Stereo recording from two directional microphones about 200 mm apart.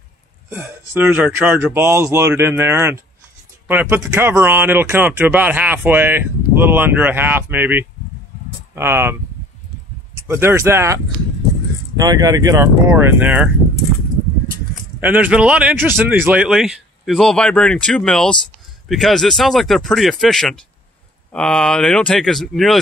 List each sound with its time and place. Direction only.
0.5 s speech: 10° right (ahead or behind)
10.1 s speech: 10° right (ahead or behind)
12.0 s speech: 20° right (ahead or behind)
15.0 s speech: 10° right (ahead or behind)